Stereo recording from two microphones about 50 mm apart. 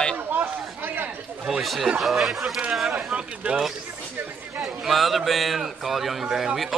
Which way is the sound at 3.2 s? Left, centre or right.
Right.